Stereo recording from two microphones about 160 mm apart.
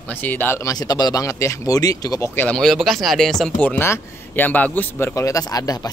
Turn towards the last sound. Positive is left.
turn(degrees=25)  # may be behind; listen again after turning